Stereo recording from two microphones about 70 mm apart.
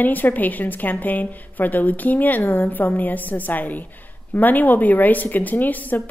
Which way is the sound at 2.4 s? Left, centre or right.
Left.